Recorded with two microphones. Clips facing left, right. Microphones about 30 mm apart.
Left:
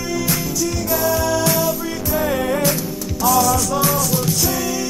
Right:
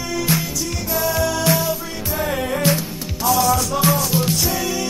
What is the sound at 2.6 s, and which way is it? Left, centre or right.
Music, right.